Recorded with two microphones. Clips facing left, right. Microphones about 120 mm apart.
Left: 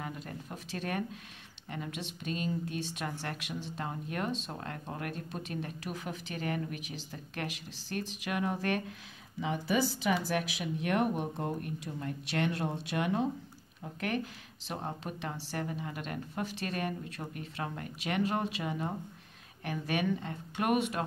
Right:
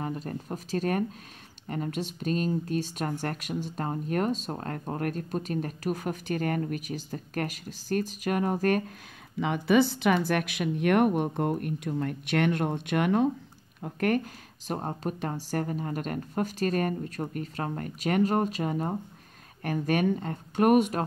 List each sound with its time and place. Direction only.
0.0 s speech: 40° right (ahead or behind)
9.4 s speech: 65° right (ahead or behind); by 21.0 s 45° right (ahead or behind)